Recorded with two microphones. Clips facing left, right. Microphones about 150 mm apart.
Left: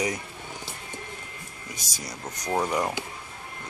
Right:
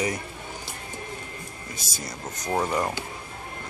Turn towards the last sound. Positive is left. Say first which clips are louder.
# even
turn(degrees=15)  # may be behind; listen again after turning